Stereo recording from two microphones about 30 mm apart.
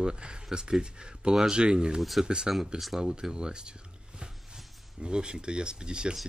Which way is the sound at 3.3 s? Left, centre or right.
Right.